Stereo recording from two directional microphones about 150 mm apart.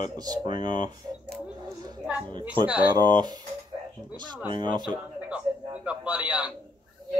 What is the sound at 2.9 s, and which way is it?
Speech, 30° right (ahead or behind).